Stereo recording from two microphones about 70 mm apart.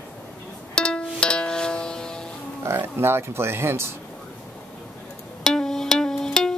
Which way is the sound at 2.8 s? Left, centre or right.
Right.